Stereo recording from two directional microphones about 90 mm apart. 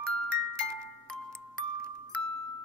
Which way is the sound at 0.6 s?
10° left (ahead or behind).